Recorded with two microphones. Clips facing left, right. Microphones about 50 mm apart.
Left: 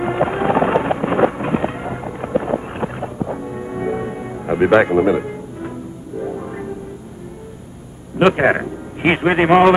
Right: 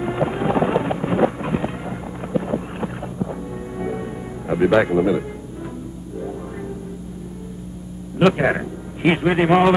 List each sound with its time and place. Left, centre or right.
0.0 s a sound: left
6.2 s music: left
8.2 s a man's voice: left